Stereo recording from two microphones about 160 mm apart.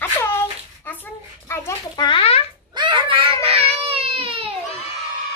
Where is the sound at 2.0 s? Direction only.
35° left (ahead or behind).